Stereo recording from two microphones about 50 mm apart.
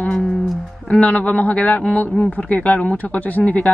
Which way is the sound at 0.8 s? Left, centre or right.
Left.